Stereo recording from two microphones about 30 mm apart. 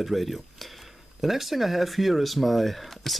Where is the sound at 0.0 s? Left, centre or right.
Centre.